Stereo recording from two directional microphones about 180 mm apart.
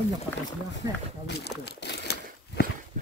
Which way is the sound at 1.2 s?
70° left (ahead or behind).